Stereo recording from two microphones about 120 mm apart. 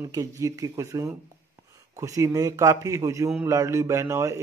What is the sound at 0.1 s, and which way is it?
Speech, 25° right (ahead or behind).